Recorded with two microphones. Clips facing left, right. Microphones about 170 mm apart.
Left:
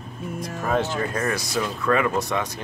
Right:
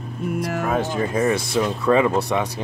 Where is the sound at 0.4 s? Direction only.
75° right (ahead or behind).